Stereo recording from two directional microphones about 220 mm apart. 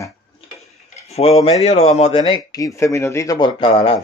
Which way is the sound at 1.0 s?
30° left (ahead or behind).